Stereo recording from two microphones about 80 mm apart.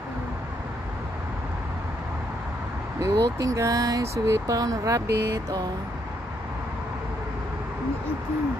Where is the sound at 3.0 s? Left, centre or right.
Right.